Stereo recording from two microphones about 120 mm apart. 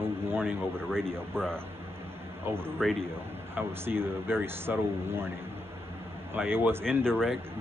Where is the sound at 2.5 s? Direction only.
20° right (ahead or behind).